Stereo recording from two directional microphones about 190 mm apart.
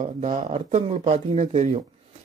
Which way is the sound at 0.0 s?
40° right (ahead or behind).